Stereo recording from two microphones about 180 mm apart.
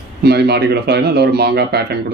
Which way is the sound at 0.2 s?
65° right (ahead or behind).